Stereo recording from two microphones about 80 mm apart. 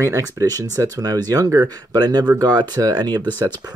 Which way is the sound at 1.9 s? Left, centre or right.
Right.